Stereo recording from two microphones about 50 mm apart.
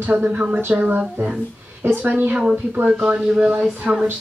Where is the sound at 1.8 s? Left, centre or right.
Right.